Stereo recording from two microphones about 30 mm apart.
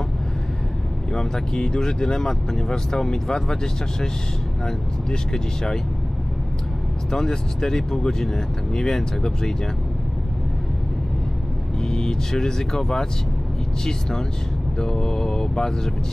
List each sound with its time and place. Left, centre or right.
1.1 s speech: left
5.1 s speech: left
7.1 s speech: left
11.9 s speech: left
14.8 s speech: centre